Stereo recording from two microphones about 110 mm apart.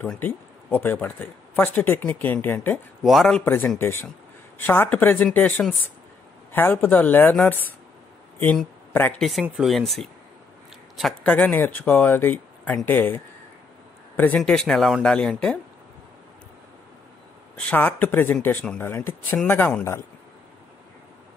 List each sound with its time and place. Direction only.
0.0 s speech: 10° left (ahead or behind)
3.0 s speech: centre (ahead or behind)
3.4 s speech: 20° left (ahead or behind)
9.2 s speech: centre (ahead or behind)
11.2 s speech: 15° left (ahead or behind)
14.4 s speech: 5° left (ahead or behind)
17.6 s speech: 10° left (ahead or behind)